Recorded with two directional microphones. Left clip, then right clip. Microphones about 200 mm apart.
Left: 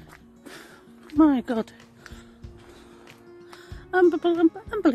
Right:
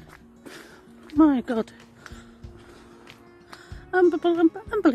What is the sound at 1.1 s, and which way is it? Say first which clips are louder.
Speech: even; 15° left (ahead or behind).